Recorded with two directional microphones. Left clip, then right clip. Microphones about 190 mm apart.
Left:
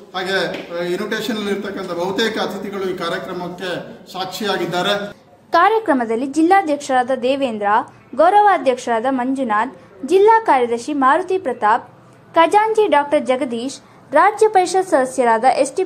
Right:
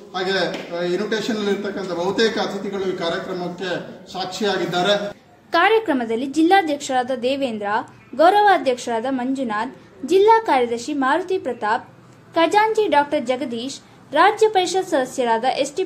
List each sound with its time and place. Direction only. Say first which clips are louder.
0.1 s a woman's voice: left 1 dB; 5° left (ahead or behind)
5.5 s speech: left 3 dB; 15° left (ahead or behind)
5.9 s a woman's voice: left 3 dB; centre (ahead or behind); by 15.8 s 15° left (ahead or behind)